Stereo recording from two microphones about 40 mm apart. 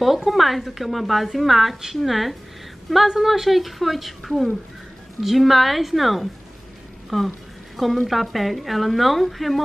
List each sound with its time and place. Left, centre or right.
0.0 s a woman's voice: centre